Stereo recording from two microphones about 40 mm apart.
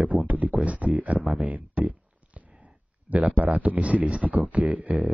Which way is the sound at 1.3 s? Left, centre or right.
Right.